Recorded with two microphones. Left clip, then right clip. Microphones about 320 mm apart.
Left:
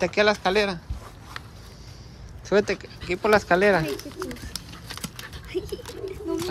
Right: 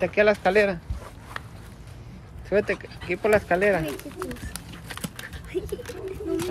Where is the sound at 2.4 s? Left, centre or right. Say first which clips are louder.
Left 1 dB; centre.